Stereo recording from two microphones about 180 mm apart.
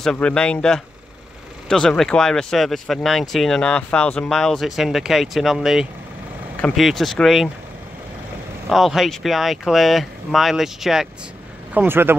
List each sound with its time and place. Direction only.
0.0 s speech: 5° left (ahead or behind)
8.6 s speech: centre (ahead or behind)